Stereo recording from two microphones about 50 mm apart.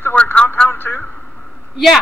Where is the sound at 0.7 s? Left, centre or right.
Left.